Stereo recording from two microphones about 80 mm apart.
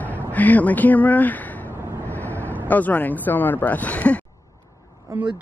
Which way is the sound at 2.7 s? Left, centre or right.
Left.